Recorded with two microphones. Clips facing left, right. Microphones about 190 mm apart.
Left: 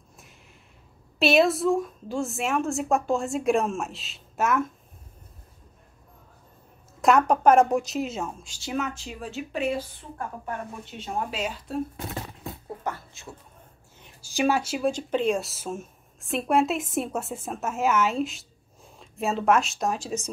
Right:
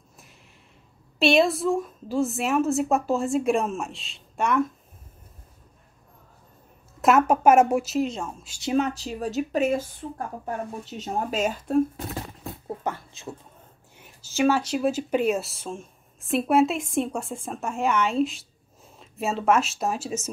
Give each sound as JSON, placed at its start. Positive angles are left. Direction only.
{"t": 1.2, "sound": "a woman's voice", "side_deg": 0}
{"t": 7.0, "sound": "a woman's voice", "side_deg": -5}
{"t": 8.5, "sound": "speech", "side_deg": -25}
{"t": 12.8, "sound": "speech", "side_deg": -20}
{"t": 14.2, "sound": "speech", "side_deg": 15}
{"t": 14.9, "sound": "a woman's voice", "side_deg": -5}